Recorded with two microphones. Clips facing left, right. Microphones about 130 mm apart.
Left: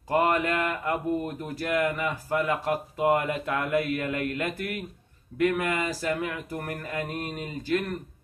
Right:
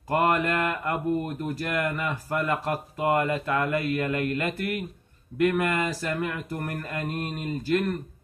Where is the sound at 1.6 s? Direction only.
5° left (ahead or behind).